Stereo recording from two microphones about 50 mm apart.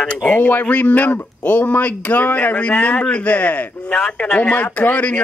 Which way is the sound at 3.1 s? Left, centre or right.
Left.